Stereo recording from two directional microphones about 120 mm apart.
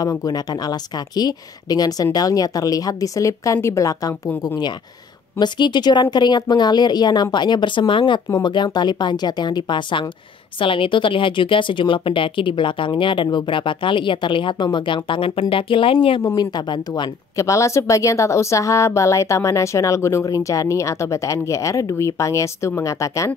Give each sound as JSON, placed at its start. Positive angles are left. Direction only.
{"t": 0.0, "sound": "speech", "side_deg": 30}
{"t": 5.4, "sound": "speech", "side_deg": 35}
{"t": 16.2, "sound": "speech", "side_deg": 35}
{"t": 17.4, "sound": "a woman's voice", "side_deg": 25}